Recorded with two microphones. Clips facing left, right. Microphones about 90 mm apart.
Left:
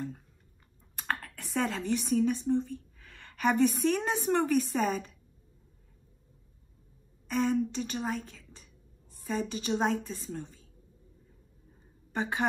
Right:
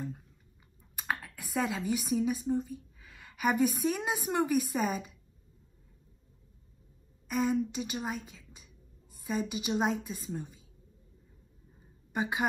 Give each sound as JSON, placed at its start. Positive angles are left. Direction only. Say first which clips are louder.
{"t": 0.9, "sound": "speech", "louder": "left 1 dB", "side_deg": -5}
{"t": 7.2, "sound": "a woman's voice", "louder": "left 1 dB", "side_deg": -5}
{"t": 12.1, "sound": "a woman's voice", "louder": "even", "side_deg": -10}